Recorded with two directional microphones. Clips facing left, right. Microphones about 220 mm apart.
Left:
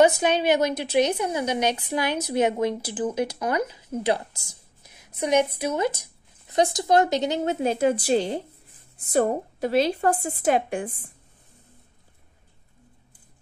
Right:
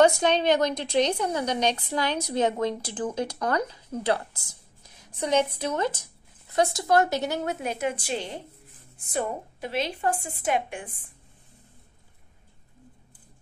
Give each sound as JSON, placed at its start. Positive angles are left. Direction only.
{"t": 0.0, "sound": "a woman's voice", "side_deg": 10}
{"t": 4.8, "sound": "a sound", "side_deg": 10}
{"t": 5.6, "sound": "a woman's voice", "side_deg": 10}